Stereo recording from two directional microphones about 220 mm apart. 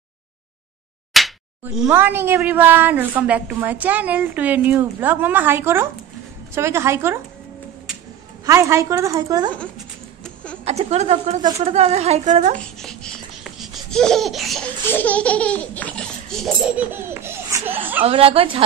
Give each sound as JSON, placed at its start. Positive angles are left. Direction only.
{"t": 1.1, "sound": "speech", "side_deg": 0}
{"t": 8.5, "sound": "speech", "side_deg": -15}
{"t": 10.6, "sound": "a woman's voice", "side_deg": -30}
{"t": 12.5, "sound": "babbling", "side_deg": 5}
{"t": 16.7, "sound": "laughter", "side_deg": -10}
{"t": 18.0, "sound": "a woman's voice", "side_deg": -25}